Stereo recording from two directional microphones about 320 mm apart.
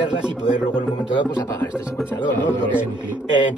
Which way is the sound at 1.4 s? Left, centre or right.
Centre.